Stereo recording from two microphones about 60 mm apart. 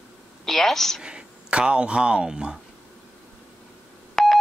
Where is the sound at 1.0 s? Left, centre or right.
Centre.